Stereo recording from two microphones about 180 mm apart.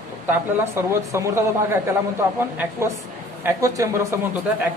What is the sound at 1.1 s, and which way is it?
Speech, 15° right (ahead or behind).